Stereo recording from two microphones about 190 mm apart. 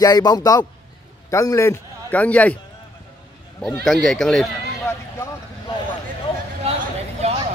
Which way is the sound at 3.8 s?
Centre (ahead or behind).